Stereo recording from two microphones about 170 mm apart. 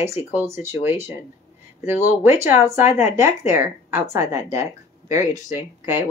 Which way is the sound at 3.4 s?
45° left (ahead or behind).